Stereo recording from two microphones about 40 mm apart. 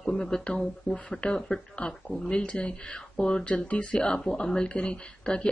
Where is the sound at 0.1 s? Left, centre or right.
Centre.